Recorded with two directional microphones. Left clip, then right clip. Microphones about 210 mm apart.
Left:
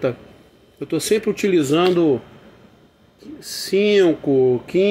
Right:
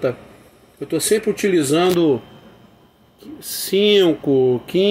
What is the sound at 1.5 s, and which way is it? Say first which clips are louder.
Speech: even; 5° right (ahead or behind).